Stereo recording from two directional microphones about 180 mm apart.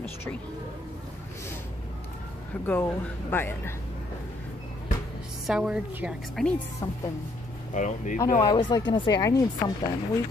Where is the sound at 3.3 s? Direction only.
10° left (ahead or behind).